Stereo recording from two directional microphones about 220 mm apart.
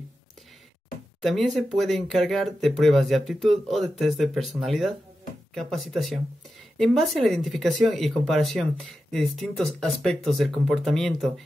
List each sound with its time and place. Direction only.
1.2 s speech: centre (ahead or behind)